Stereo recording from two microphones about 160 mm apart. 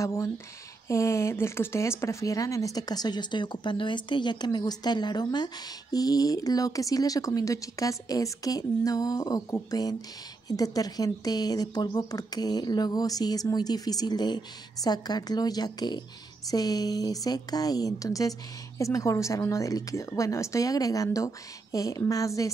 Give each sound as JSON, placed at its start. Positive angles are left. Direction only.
{"t": 0.0, "sound": "speech", "side_deg": 20}